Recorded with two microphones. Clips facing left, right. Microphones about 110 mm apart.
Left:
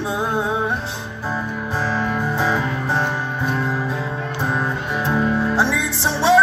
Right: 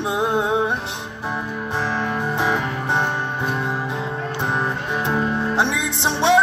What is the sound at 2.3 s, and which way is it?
Music, 20° right (ahead or behind).